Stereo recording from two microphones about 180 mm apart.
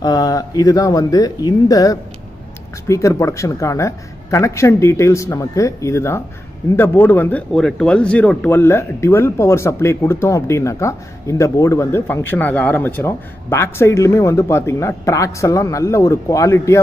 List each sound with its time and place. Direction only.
0.0 s speech: 20° left (ahead or behind)